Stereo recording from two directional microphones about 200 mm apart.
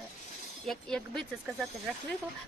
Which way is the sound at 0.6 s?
5° left (ahead or behind).